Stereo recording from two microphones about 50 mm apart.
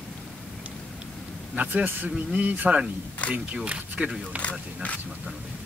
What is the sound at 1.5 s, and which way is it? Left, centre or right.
Speech, right.